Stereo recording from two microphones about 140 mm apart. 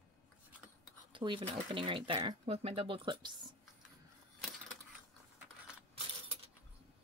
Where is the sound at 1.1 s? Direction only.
35° right (ahead or behind).